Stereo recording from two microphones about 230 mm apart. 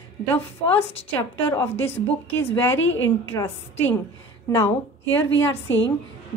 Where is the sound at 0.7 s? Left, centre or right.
Centre.